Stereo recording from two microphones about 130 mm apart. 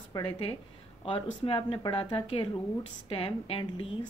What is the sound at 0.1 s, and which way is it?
A woman's voice, 40° left (ahead or behind).